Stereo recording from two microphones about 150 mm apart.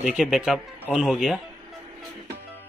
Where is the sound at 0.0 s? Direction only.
Centre (ahead or behind).